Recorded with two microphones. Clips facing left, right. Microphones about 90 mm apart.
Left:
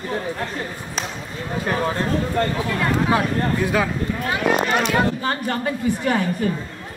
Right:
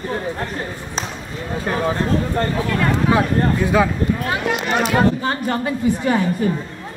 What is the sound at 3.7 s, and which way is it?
Speech, 25° right (ahead or behind).